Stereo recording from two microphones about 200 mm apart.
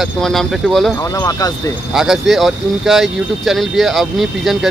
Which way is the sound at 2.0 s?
Centre (ahead or behind).